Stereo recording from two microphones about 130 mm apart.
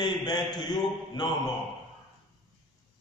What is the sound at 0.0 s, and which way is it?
A man's voice, 30° left (ahead or behind).